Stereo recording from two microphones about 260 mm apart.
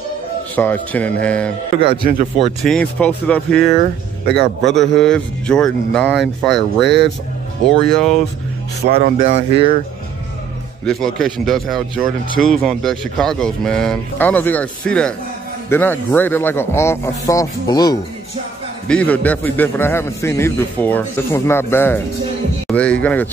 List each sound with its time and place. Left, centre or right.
0.6 s speech: centre
1.8 s speech: centre
2.6 s speech: centre
4.3 s speech: right
4.7 s speech: centre
8.9 s speech: right
10.9 s a man's voice: centre